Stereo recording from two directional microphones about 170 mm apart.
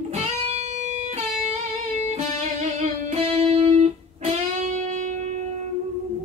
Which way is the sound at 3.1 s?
35° right (ahead or behind).